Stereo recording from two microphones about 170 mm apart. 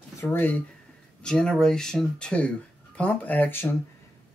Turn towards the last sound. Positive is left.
turn(degrees=10)  # may be behind; listen again after turning